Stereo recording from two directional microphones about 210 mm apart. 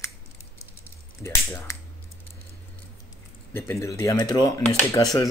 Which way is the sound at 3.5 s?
10° left (ahead or behind).